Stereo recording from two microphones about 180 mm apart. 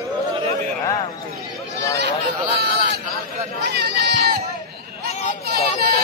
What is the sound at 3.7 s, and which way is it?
Chatter, 65° right (ahead or behind).